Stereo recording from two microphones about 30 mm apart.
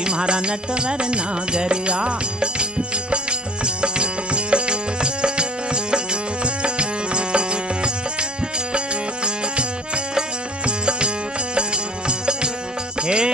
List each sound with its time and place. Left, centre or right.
0.0 s music: right